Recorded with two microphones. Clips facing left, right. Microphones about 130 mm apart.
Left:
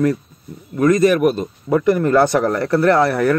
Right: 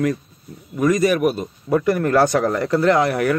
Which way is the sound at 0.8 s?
10° right (ahead or behind).